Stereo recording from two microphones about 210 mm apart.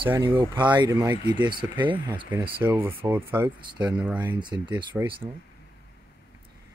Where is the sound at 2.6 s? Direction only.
10° right (ahead or behind).